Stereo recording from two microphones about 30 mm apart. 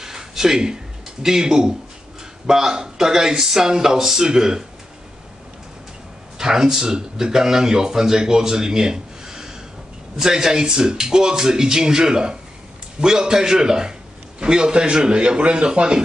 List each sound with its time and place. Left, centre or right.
0.0 s a sound: centre
1.2 s speech: centre
6.3 s a man's voice: centre